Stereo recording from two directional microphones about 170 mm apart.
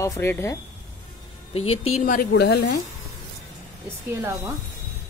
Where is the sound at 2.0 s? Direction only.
55° left (ahead or behind); by 2.8 s 75° left (ahead or behind).